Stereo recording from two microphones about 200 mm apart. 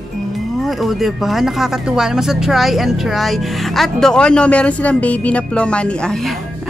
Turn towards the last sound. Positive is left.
turn(degrees=0)  # may be behind; listen again after turning